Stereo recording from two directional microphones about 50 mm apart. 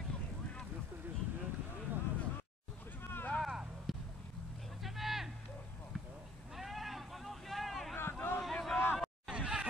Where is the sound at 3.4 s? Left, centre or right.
Centre.